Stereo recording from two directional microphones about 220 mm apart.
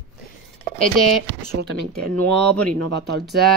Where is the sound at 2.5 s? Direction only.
90° right.